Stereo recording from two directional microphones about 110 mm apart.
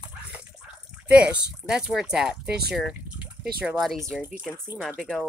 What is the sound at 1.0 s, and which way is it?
Speech, 10° right (ahead or behind).